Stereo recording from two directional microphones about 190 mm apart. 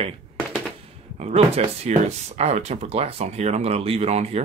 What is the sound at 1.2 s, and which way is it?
Speech, 35° right (ahead or behind).